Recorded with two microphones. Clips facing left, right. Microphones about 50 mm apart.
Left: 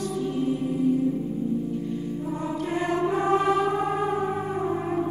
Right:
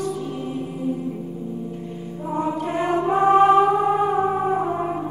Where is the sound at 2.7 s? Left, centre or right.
Right.